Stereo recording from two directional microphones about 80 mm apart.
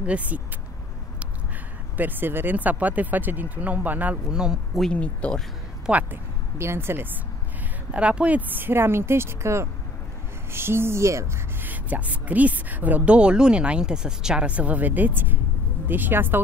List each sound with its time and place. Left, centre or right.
0.0 s speech: centre
2.0 s a woman's voice: right
4.3 s speech: centre
4.9 s speech: centre
5.9 s speech: centre
6.6 s speech: right
7.9 s a woman's voice: centre; by 11.2 s right
11.6 s a woman's voice: right